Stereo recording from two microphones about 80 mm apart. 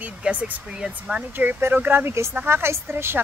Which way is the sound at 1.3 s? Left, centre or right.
Right.